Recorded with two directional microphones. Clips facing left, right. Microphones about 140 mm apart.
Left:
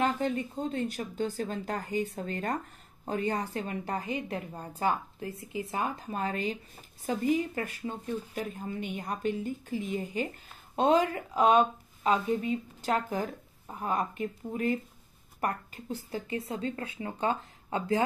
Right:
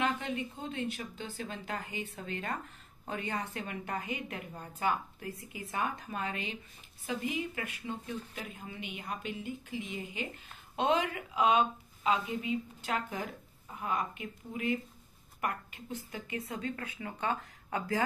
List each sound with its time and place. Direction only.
0.0 s speech: 40° left (ahead or behind)